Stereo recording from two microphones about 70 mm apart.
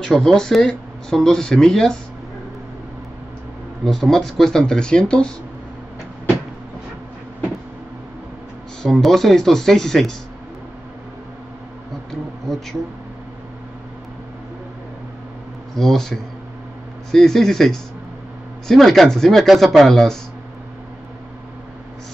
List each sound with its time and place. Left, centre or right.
0.0 s speech: centre
3.8 s speech: centre
8.8 s speech: centre
15.7 s speech: centre